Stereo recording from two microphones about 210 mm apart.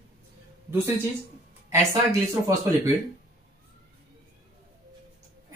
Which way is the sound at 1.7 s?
15° right (ahead or behind).